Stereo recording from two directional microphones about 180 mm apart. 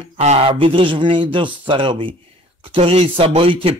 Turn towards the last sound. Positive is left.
turn(degrees=-30)  # may be behind; listen again after turning